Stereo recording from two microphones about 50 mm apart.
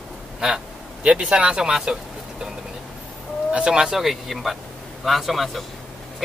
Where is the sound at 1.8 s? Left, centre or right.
Centre.